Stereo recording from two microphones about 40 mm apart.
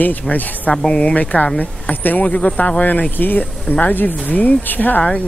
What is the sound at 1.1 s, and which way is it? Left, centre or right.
Speech, left.